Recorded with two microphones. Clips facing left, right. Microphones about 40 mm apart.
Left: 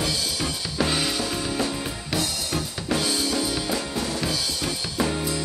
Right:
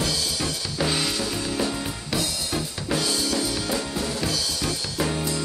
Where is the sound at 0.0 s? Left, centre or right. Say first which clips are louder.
Even; centre.